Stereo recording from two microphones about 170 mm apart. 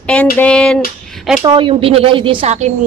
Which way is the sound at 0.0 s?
5° left (ahead or behind).